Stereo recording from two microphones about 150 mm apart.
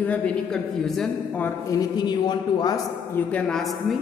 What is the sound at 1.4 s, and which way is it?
A man's voice, 25° left (ahead or behind).